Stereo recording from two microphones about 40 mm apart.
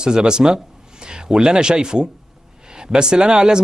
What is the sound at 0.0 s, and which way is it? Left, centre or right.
Speech, right.